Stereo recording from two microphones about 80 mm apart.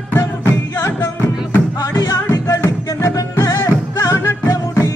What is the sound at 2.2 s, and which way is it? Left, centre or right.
Music, left.